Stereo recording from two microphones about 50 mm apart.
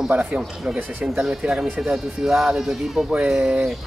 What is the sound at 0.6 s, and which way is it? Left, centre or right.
Speech, right.